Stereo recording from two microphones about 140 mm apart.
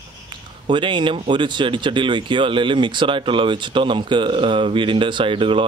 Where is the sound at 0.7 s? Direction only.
35° right (ahead or behind).